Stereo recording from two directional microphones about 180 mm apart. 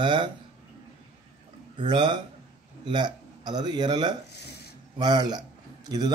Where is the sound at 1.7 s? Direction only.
25° right (ahead or behind).